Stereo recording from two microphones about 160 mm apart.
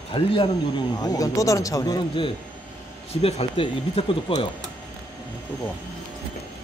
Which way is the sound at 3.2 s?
40° left (ahead or behind).